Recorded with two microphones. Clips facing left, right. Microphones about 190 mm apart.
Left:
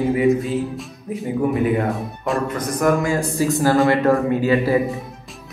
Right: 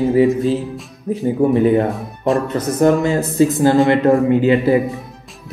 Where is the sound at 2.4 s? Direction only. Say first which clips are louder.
Right 3 dB; 25° right (ahead or behind).